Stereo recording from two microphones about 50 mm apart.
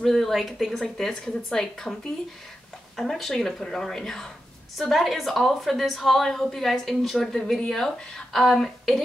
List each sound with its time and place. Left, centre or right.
0.0 s a woman's voice: centre
3.0 s a woman's voice: centre